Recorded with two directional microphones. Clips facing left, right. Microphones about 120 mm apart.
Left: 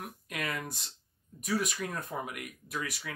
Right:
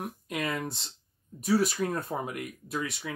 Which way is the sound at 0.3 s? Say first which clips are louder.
Right 4 dB; 25° right (ahead or behind).